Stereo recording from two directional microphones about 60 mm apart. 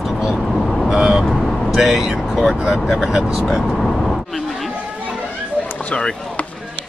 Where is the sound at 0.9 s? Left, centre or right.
Centre.